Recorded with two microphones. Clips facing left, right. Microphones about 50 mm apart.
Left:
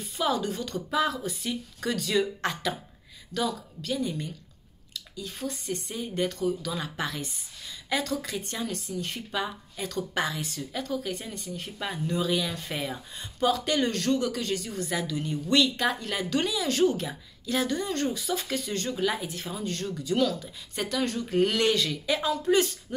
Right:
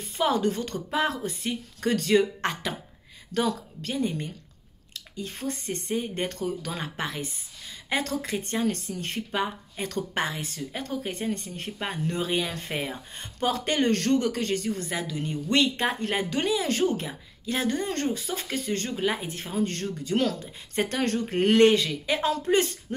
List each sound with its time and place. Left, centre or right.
0.2 s speech: right
3.3 s speech: right
8.0 s speech: right
9.3 s speech: right
13.1 s speech: right
21.7 s speech: right